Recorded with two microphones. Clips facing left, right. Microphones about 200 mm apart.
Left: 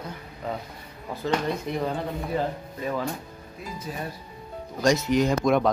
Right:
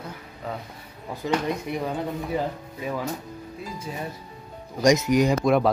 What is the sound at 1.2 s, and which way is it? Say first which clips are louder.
Speech: right 1 dB; 15° right (ahead or behind).